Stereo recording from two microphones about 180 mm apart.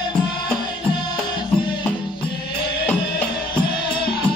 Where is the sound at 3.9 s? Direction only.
25° left (ahead or behind).